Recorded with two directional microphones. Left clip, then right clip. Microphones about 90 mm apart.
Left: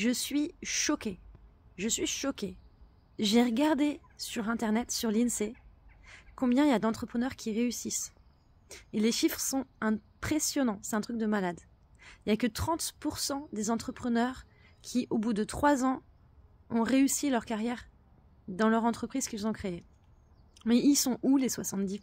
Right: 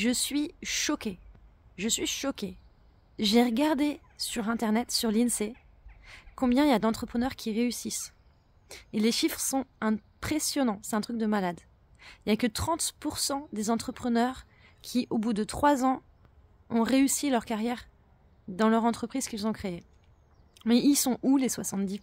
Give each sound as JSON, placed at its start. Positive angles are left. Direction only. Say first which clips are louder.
{"t": 0.0, "sound": "a woman's voice", "louder": "right 2 dB", "side_deg": -15}